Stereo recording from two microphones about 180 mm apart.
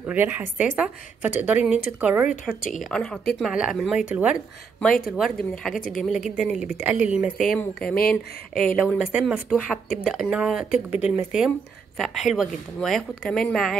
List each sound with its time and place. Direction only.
0.0 s speech: 10° right (ahead or behind)